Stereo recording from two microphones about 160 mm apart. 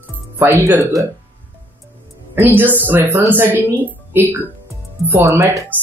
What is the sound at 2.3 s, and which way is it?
Speech, 15° right (ahead or behind).